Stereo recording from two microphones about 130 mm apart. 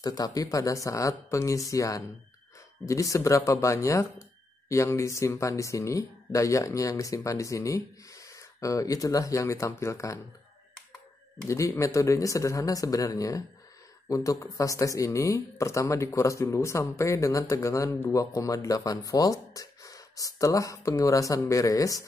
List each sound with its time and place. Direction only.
0.0 s speech: 30° left (ahead or behind)
11.4 s speech: 25° left (ahead or behind)